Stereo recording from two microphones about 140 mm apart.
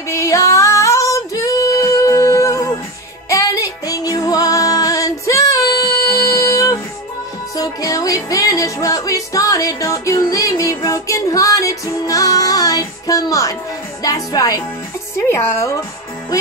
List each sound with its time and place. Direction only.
0.1 s female singing: 20° left (ahead or behind)
3.3 s music: 25° left (ahead or behind)
14.0 s speech: 25° left (ahead or behind)